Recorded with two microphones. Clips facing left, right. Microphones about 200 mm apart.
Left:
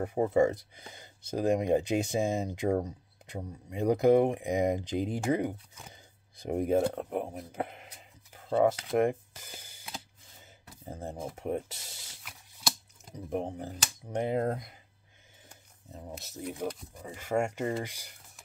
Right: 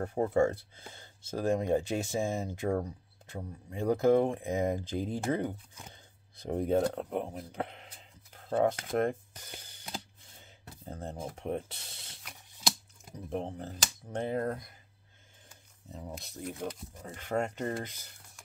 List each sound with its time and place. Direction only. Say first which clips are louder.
0.0 s speech: left 2 dB; 10° left (ahead or behind)
8.9 s a sound: left 3 dB; 10° left (ahead or behind)
10.9 s speech: left 1 dB; 5° left (ahead or behind)
15.9 s speech: even; 5° left (ahead or behind)